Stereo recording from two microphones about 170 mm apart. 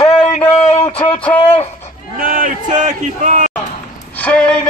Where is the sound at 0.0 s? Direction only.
35° left (ahead or behind).